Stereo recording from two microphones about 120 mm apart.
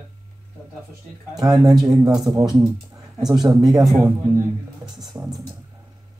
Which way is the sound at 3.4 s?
35° right (ahead or behind).